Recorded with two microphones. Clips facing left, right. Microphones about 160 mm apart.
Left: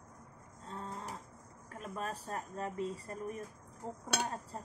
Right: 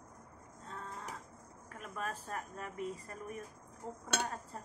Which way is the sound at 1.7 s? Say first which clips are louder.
Left 1 dB; 35° left (ahead or behind).